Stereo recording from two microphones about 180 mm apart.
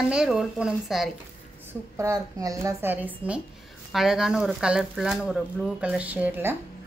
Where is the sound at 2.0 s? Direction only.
20° right (ahead or behind).